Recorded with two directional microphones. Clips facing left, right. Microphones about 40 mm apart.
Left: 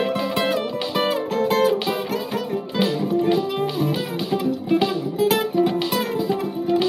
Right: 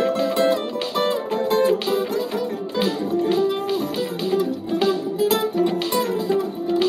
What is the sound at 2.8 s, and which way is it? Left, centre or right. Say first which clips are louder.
Music: left 1 dB; centre.